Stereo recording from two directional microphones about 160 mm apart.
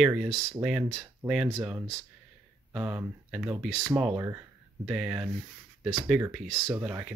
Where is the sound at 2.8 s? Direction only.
10° right (ahead or behind).